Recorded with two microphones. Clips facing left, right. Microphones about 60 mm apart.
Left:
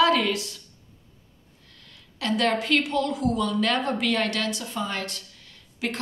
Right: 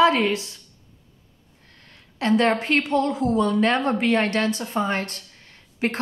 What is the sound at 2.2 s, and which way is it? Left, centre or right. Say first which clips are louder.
A woman's voice: right 4 dB; right.